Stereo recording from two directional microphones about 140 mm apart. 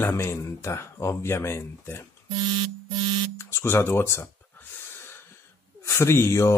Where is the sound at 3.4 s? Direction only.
20° left (ahead or behind).